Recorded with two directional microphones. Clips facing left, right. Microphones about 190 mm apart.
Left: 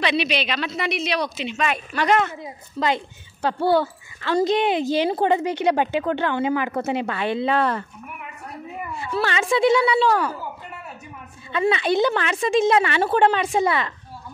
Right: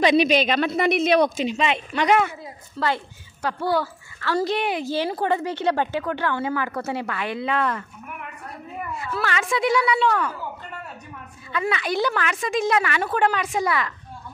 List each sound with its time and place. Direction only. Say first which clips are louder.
0.0 s speech: right 5 dB; 45° right (ahead or behind)
1.6 s speech: left 2 dB; 20° right (ahead or behind)
2.0 s speech: even; 10° right (ahead or behind)
2.4 s speech: left 2 dB; 20° left (ahead or behind)
8.9 s speech: left 3 dB; 30° left (ahead or behind)
11.5 s speech: left 5 dB; 25° left (ahead or behind)